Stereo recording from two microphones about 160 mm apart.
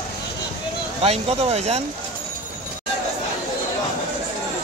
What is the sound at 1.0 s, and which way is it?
Speech, 40° right (ahead or behind).